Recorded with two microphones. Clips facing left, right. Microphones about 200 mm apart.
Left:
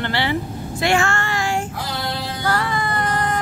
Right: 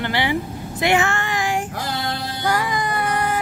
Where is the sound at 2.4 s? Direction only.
15° right (ahead or behind).